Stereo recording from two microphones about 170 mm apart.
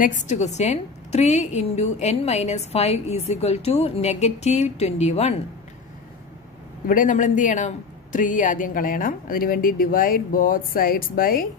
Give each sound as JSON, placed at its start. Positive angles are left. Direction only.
{"t": 0.0, "sound": "a woman's voice", "side_deg": 45}
{"t": 6.9, "sound": "a man's voice", "side_deg": 50}